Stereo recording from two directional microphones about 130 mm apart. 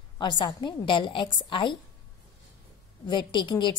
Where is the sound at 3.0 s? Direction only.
35° left (ahead or behind).